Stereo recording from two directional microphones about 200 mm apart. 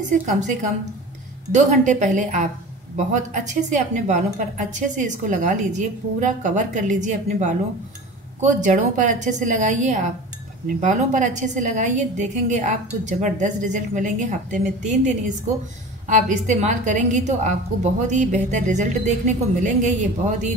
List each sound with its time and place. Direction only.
0.1 s a woman's voice: 35° right (ahead or behind)